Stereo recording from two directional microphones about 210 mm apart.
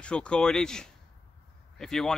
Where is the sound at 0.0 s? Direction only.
5° left (ahead or behind).